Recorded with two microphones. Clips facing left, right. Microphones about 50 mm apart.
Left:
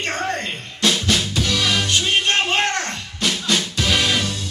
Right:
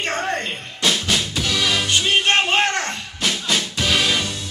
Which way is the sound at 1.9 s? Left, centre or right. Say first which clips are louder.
Right 1 dB; centre.